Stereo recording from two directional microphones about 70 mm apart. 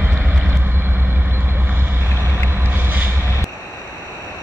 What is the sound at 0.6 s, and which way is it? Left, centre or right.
Vehicle, right.